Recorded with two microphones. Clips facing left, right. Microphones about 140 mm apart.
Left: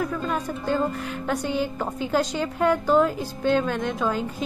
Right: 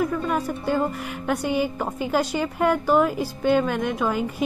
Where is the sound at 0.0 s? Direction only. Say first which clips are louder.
Right 3 dB; 5° right (ahead or behind).